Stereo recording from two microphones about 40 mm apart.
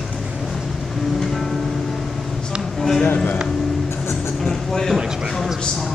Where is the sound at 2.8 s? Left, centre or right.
Centre.